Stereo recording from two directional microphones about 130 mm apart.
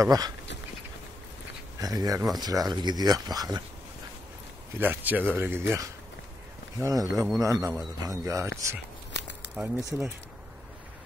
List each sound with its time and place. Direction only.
0.0 s speech: 30° right (ahead or behind)
1.8 s speech: 30° right (ahead or behind)
4.7 s speech: 15° right (ahead or behind)